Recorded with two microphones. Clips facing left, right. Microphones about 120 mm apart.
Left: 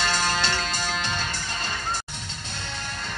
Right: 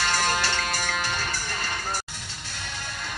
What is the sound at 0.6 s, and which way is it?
Music, 25° left (ahead or behind).